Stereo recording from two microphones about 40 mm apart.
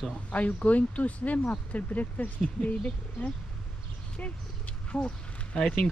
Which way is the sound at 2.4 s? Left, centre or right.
Left.